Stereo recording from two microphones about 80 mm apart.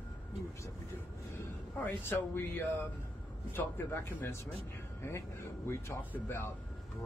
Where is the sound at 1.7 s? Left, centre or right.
Left.